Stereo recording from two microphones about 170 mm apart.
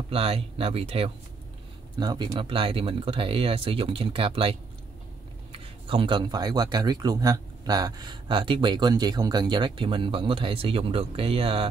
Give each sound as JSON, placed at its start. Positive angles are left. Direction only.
{"t": 0.1, "sound": "speech", "side_deg": -35}
{"t": 2.0, "sound": "speech", "side_deg": -25}